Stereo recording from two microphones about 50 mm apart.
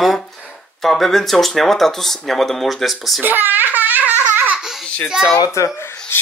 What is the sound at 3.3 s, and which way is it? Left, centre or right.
Speech, right.